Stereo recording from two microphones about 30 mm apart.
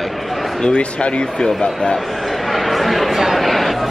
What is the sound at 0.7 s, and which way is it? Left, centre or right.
Speech, left.